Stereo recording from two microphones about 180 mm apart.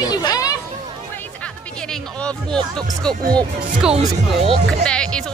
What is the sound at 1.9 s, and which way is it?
Music, 5° left (ahead or behind).